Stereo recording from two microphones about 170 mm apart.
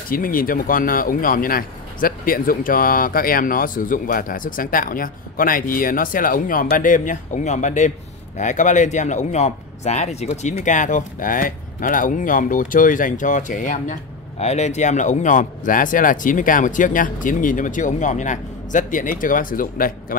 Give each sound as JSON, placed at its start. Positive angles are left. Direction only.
{"t": 0.1, "sound": "a man's voice", "side_deg": 55}